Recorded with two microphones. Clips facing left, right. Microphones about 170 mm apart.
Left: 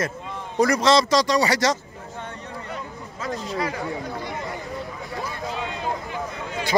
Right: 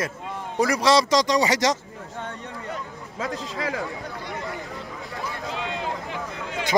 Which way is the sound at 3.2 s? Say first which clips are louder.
Left 2 dB; 90° right.